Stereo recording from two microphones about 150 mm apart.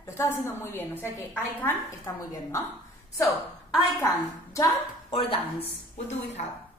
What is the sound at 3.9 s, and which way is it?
Speech, 20° left (ahead or behind).